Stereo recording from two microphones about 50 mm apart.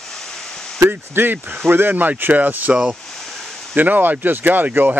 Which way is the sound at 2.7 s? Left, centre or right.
Centre.